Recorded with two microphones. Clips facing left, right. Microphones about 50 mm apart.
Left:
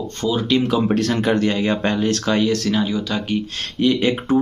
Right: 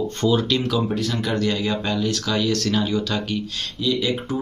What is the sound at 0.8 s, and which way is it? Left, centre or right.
Speech, left.